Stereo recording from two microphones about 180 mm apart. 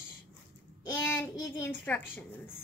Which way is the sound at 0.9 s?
10° left (ahead or behind).